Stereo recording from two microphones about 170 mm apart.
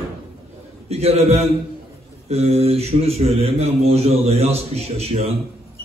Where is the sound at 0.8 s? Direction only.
35° right (ahead or behind).